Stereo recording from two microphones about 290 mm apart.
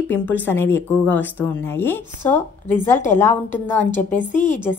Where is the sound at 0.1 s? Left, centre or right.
Centre.